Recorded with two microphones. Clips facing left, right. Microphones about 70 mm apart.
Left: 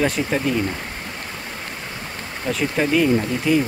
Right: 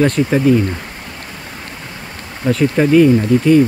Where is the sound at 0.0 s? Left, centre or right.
Centre.